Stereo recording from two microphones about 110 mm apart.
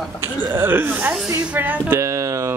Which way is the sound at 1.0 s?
10° right (ahead or behind).